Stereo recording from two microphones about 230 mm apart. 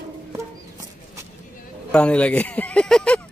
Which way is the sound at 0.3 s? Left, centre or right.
Centre.